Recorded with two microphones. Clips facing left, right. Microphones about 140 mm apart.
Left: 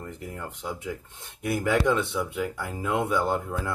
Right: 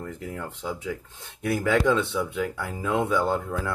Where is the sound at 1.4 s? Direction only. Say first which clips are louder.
Right 1 dB; 15° left (ahead or behind).